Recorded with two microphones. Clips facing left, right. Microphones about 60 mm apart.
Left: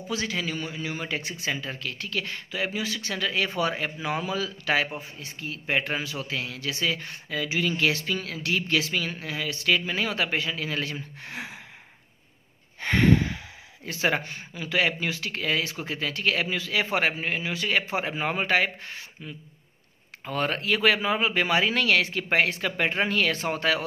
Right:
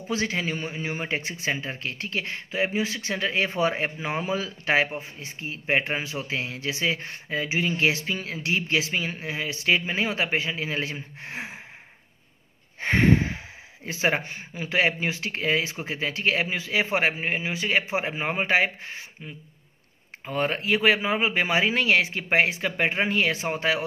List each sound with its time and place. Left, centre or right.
0.1 s speech: right
12.8 s a sound: right
13.8 s speech: right